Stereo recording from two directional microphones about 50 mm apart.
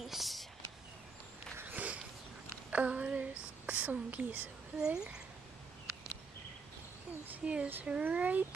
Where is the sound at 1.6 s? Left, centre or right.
Right.